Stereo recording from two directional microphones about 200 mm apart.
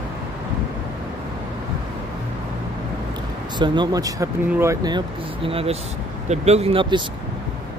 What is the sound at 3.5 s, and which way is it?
Speech, 20° right (ahead or behind).